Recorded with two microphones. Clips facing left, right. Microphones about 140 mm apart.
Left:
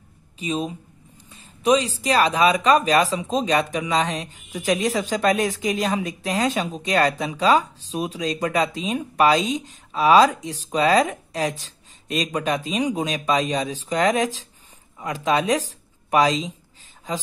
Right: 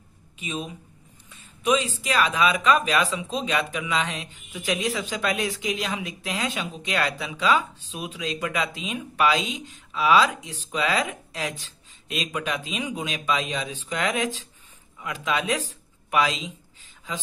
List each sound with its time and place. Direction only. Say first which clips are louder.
0.4 s a woman's voice: left 7 dB; 35° left (ahead or behind)